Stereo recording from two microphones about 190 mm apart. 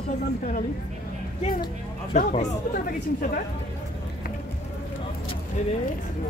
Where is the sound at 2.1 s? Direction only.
45° left (ahead or behind).